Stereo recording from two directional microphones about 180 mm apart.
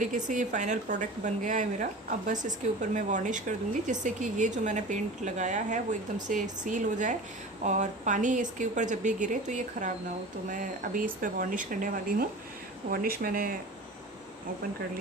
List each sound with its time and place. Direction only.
0.0 s speech: 45° right (ahead or behind)